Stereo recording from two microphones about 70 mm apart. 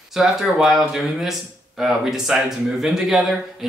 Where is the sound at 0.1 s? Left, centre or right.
Centre.